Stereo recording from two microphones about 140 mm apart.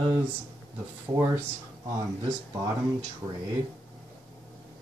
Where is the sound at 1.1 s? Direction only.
25° right (ahead or behind).